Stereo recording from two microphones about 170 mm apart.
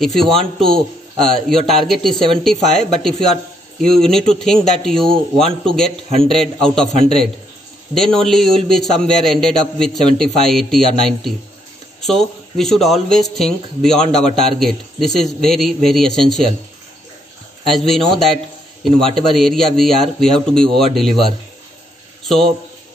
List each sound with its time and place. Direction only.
0.0 s a man's voice: centre (ahead or behind)
7.9 s a man's voice: centre (ahead or behind)
17.6 s a man's voice: centre (ahead or behind)
22.2 s a sound: centre (ahead or behind)